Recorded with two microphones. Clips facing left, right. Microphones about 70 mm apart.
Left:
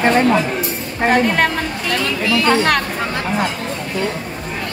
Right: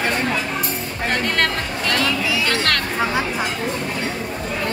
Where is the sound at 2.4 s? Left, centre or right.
Centre.